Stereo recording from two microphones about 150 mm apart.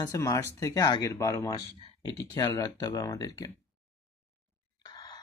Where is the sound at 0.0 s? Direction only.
20° left (ahead or behind).